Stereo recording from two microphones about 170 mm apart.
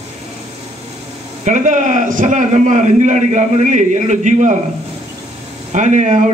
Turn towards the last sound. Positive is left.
turn(degrees=-45)  # may be behind; listen again after turning